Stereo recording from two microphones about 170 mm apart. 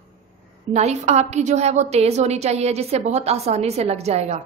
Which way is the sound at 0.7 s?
40° right (ahead or behind).